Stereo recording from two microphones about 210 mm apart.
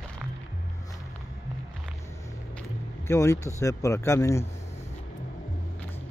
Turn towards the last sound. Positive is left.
turn(degrees=15)  # may be behind; listen again after turning